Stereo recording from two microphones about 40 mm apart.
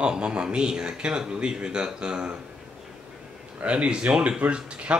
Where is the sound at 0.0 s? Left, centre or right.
Right.